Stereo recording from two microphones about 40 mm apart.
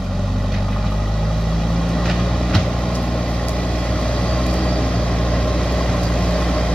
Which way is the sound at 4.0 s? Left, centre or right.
Left.